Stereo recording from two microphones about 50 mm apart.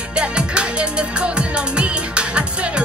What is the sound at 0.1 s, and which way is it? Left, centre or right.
Music, centre.